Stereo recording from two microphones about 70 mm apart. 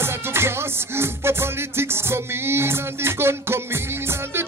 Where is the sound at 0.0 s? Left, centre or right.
Right.